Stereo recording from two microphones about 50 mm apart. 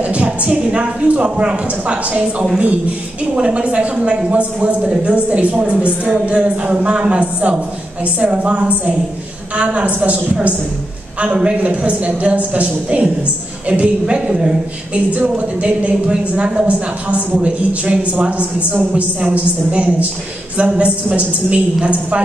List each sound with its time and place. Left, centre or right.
0.0 s a woman's voice: right
15.1 s a woman's voice: right